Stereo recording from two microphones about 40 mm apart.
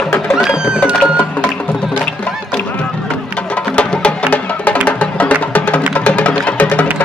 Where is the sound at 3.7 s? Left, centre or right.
Left.